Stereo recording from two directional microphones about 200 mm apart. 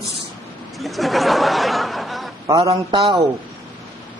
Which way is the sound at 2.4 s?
20° right (ahead or behind).